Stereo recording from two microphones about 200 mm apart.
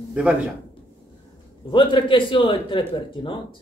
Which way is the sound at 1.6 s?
25° left (ahead or behind).